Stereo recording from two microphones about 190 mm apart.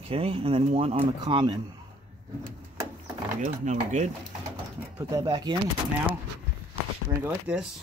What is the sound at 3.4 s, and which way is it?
Speech, 40° right (ahead or behind).